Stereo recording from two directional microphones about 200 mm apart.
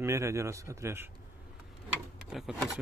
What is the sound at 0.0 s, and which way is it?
Speech, 15° right (ahead or behind).